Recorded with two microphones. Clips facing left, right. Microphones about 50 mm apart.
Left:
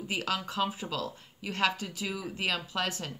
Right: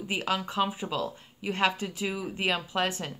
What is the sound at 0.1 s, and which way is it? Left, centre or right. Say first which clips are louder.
Speech: right 3 dB; centre.